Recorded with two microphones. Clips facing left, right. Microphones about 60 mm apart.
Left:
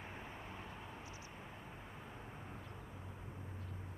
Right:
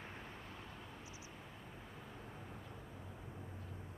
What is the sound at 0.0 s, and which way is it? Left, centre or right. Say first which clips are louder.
Vehicle: left 1 dB; centre.